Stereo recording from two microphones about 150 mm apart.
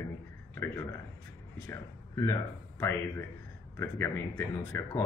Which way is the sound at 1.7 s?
20° left (ahead or behind).